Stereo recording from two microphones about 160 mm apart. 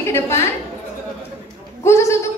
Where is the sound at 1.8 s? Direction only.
15° left (ahead or behind).